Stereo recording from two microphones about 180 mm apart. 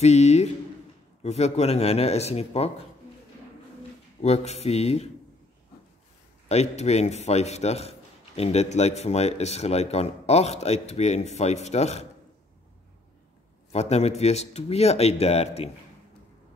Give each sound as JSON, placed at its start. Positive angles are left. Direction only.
{"t": 0.0, "sound": "speech", "side_deg": 35}
{"t": 4.2, "sound": "speech", "side_deg": 35}
{"t": 6.5, "sound": "speech", "side_deg": 40}
{"t": 13.7, "sound": "speech", "side_deg": 35}